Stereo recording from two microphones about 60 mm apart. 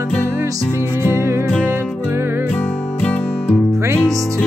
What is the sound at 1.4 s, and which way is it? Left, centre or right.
Music, left.